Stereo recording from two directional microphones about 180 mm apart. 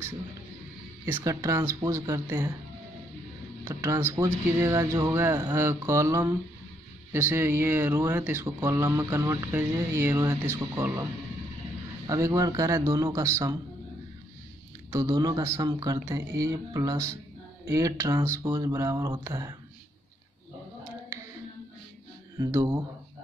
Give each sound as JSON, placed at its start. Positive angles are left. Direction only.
{"t": 1.0, "sound": "speech", "side_deg": -15}
{"t": 3.6, "sound": "speech", "side_deg": -15}
{"t": 12.1, "sound": "speech", "side_deg": -20}
{"t": 14.9, "sound": "speech", "side_deg": -20}
{"t": 22.4, "sound": "speech", "side_deg": -15}